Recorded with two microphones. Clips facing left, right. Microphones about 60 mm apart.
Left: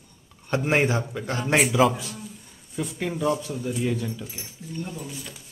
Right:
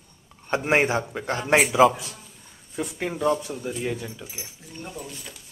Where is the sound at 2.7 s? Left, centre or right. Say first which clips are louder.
Even; centre.